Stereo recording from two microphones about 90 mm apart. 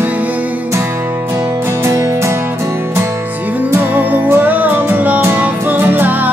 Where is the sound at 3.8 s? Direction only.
20° right (ahead or behind).